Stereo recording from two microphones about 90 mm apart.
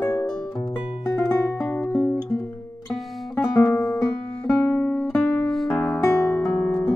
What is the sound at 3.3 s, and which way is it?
Music, 5° left (ahead or behind).